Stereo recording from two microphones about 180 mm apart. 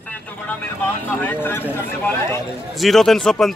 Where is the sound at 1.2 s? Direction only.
10° left (ahead or behind).